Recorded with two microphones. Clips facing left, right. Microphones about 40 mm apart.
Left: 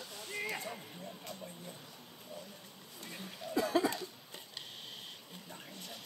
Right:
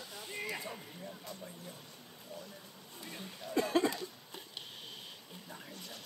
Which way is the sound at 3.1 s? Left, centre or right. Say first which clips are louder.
Left 1 dB; centre.